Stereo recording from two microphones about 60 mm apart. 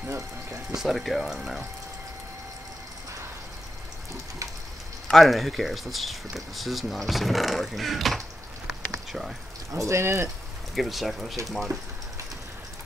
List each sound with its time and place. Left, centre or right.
0.1 s speech: right
0.7 s speech: centre
5.1 s speech: centre
9.7 s speech: right
10.7 s speech: centre